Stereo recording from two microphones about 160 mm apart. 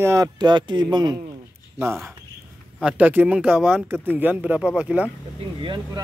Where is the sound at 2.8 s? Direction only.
5° right (ahead or behind).